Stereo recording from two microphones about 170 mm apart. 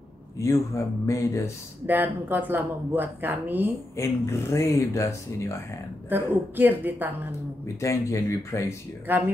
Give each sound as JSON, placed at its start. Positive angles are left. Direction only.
{"t": 1.0, "sound": "speech", "side_deg": 15}
{"t": 1.9, "sound": "speech", "side_deg": -10}
{"t": 3.9, "sound": "speech", "side_deg": 15}
{"t": 6.0, "sound": "speech", "side_deg": -10}
{"t": 7.6, "sound": "speech", "side_deg": 15}
{"t": 9.1, "sound": "speech", "side_deg": -10}